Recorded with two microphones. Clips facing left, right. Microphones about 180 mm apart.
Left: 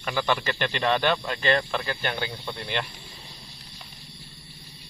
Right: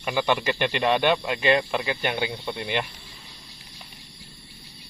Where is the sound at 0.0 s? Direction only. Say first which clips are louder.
Right 2 dB; 15° right (ahead or behind).